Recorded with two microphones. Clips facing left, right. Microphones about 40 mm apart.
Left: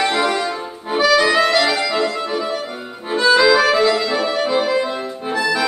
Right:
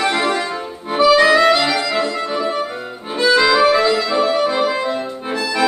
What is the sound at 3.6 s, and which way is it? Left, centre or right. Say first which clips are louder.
Accordion: right 1 dB; centre.